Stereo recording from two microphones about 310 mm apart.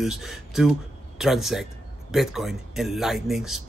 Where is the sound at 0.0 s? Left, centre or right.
Centre.